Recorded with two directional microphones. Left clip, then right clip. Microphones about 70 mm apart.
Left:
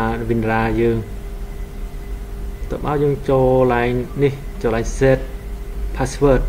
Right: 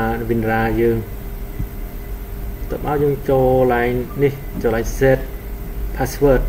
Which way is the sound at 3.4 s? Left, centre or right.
Left.